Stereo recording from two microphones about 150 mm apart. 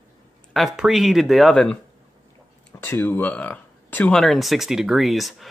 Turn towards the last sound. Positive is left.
turn(degrees=0)  # may be behind; listen again after turning